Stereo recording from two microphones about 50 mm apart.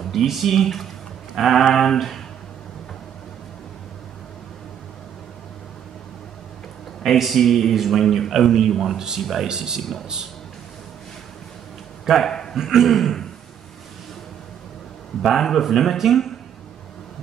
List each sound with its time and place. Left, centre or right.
0.1 s a man's voice: centre
7.1 s a man's voice: centre
8.9 s speech: centre
9.2 s a man's voice: centre
9.5 s speech: centre
9.8 s a man's voice: centre
12.3 s a sound: centre
12.5 s a man's voice: centre
15.2 s a man's voice: centre